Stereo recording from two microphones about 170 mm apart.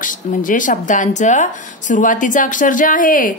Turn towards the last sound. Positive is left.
turn(degrees=55)  # may be behind; listen again after turning